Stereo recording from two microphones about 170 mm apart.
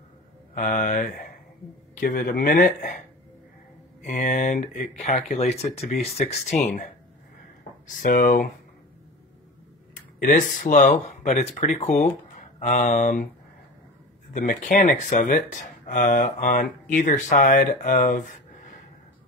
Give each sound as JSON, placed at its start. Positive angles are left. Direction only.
{"t": 0.6, "sound": "speech", "side_deg": 50}
{"t": 4.0, "sound": "speech", "side_deg": 45}
{"t": 10.1, "sound": "speech", "side_deg": 50}
{"t": 14.3, "sound": "speech", "side_deg": 50}